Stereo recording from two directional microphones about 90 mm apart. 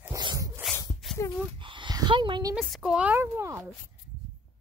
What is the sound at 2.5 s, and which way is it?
Speech, centre (ahead or behind).